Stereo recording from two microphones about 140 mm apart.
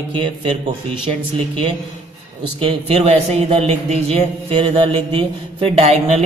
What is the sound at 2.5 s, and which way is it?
Speech, 45° right (ahead or behind).